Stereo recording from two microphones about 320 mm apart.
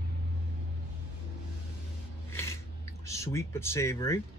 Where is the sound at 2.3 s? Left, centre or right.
Centre.